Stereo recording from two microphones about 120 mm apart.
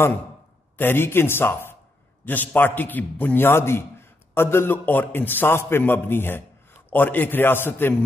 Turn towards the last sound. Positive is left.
turn(degrees=15)  # may be behind; listen again after turning